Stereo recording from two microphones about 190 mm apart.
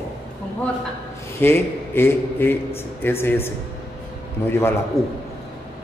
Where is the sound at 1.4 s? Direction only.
10° left (ahead or behind).